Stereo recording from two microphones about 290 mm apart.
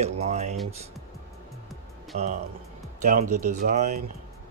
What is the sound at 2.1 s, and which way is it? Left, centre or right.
Speech, right.